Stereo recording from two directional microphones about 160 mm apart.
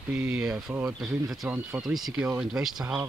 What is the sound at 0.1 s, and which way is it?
Speech, 10° right (ahead or behind).